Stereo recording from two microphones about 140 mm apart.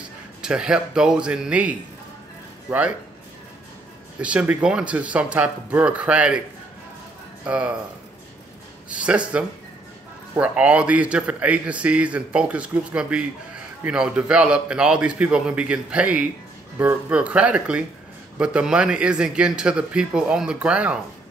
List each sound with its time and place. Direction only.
0.4 s a man's voice: 5° right (ahead or behind)
4.2 s a man's voice: 10° right (ahead or behind)
7.4 s a man's voice: 10° right (ahead or behind)
8.9 s a man's voice: 10° right (ahead or behind)